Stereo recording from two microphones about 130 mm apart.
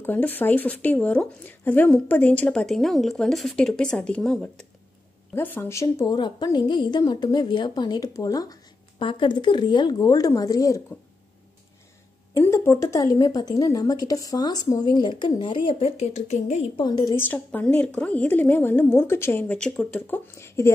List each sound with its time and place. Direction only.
0.0 s speech: 15° left (ahead or behind)
5.3 s speech: 15° left (ahead or behind)
6.1 s a woman's voice: 35° left (ahead or behind)
9.0 s a woman's voice: 40° left (ahead or behind)
12.4 s a woman's voice: 20° left (ahead or behind); by 16.6 s 60° left (ahead or behind)
16.7 s a woman's voice: 35° left (ahead or behind)
17.3 s speech: 10° left (ahead or behind)